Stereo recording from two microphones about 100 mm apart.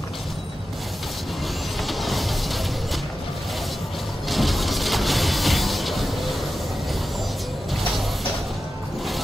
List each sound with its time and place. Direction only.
1.9 s vehicle: centre (ahead or behind)
4.3 s music: centre (ahead or behind)